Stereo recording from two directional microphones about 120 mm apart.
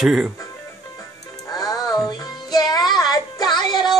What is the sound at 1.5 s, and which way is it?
Music, 35° left (ahead or behind).